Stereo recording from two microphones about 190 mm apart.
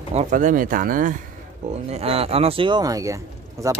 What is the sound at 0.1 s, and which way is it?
Speech, 40° right (ahead or behind).